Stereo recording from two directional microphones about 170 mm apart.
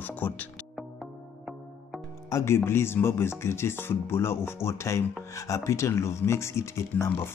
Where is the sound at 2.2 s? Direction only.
15° left (ahead or behind).